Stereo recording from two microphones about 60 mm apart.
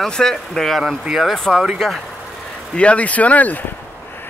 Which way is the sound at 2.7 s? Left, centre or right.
Centre.